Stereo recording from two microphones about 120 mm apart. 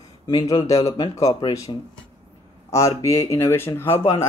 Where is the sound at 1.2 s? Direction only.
30° left (ahead or behind).